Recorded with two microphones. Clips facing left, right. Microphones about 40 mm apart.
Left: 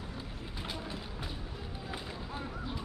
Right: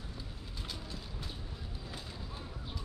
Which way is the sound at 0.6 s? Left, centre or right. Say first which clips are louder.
Left 5 dB; left.